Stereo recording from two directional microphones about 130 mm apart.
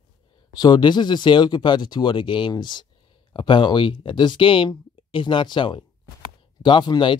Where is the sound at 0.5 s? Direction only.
30° left (ahead or behind).